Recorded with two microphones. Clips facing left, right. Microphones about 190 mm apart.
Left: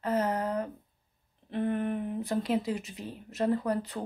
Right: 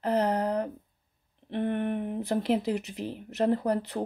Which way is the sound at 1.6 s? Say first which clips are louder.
Right 1 dB; 60° right (ahead or behind).